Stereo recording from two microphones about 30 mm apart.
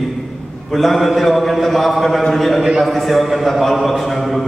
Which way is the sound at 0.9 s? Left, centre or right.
Centre.